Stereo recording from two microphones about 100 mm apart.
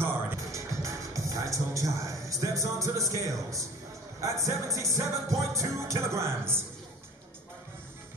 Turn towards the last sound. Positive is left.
turn(degrees=-25)  # may be behind; listen again after turning